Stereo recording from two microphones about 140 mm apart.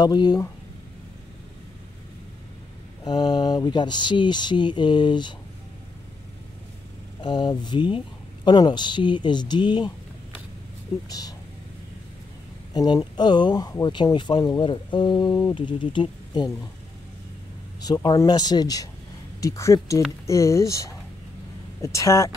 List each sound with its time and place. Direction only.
0.0 s speech: 30° left (ahead or behind)
3.0 s speech: 30° left (ahead or behind)
7.2 s speech: 35° left (ahead or behind)
11.1 s speech: 30° left (ahead or behind)
12.7 s speech: 30° left (ahead or behind)
17.7 s speech: 30° left (ahead or behind)